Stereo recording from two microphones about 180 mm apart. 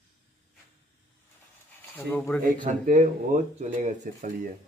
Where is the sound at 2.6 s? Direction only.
45° right (ahead or behind).